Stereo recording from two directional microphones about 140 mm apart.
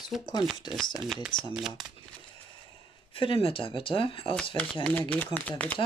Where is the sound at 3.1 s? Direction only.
40° left (ahead or behind).